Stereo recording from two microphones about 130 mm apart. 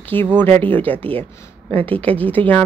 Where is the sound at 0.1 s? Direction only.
15° left (ahead or behind).